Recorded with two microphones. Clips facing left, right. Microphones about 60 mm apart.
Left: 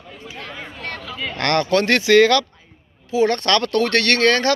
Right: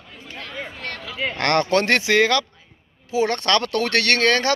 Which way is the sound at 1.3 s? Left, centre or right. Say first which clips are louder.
Left 1 dB; right.